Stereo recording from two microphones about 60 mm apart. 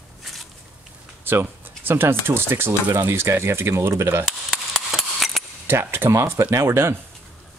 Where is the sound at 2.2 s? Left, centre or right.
Right.